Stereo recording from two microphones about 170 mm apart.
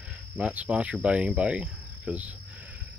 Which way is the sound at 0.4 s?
5° right (ahead or behind).